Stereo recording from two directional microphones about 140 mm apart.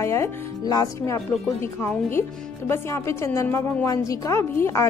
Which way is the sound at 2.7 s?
20° left (ahead or behind).